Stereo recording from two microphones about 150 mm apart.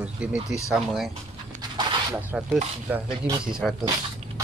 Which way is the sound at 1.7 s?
30° right (ahead or behind).